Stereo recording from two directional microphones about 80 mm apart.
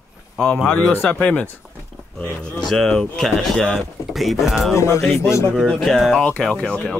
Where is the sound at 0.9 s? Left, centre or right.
Left; by 4.5 s centre.